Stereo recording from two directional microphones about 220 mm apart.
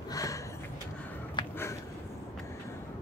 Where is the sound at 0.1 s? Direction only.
15° left (ahead or behind).